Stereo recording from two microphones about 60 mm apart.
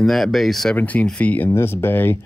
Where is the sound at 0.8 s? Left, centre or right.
Left.